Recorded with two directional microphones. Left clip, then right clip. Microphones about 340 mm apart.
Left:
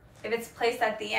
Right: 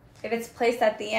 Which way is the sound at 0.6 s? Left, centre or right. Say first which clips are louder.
Right 5 dB; centre.